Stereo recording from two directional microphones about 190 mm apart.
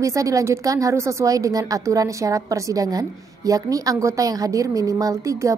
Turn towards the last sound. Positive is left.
turn(degrees=-15)  # may be behind; listen again after turning